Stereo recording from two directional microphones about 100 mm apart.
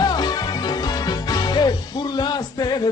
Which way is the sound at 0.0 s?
45° left (ahead or behind).